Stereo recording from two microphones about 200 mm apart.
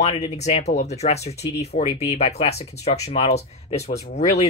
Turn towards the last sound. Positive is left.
turn(degrees=35)  # may be behind; listen again after turning